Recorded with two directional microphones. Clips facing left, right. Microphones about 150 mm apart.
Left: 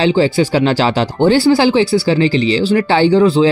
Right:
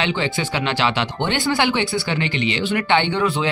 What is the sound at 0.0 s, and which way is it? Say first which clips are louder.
Speech: left 10 dB; 35° left (ahead or behind).